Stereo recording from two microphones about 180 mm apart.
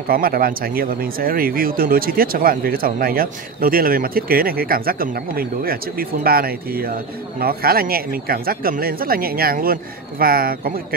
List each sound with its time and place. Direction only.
0.1 s speech: 55° right (ahead or behind)